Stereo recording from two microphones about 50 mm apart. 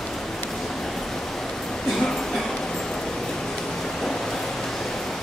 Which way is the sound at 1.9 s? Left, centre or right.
Centre.